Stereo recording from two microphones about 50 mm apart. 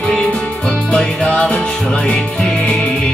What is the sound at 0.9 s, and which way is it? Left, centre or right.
Music, centre.